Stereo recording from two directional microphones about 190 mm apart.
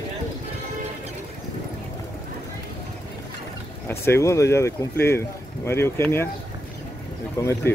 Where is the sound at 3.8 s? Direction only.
15° left (ahead or behind).